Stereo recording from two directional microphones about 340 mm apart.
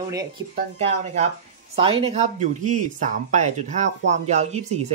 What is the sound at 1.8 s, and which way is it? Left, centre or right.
Speech, centre.